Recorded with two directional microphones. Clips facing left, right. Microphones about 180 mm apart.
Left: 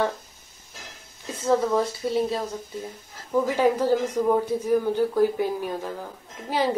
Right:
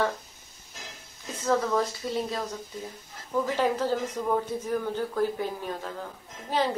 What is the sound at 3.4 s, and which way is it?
Speech, 10° left (ahead or behind).